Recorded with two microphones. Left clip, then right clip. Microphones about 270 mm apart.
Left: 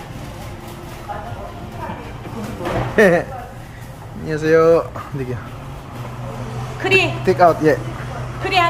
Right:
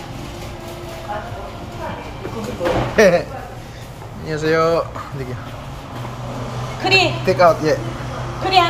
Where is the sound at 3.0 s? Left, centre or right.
Left.